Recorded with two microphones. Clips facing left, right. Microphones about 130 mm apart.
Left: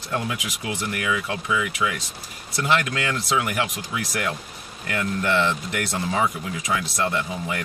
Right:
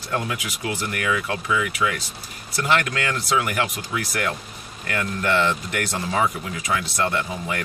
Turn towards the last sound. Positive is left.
turn(degrees=15)  # may be behind; listen again after turning